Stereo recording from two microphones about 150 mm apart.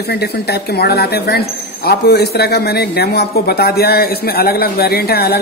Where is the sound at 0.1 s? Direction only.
90° left.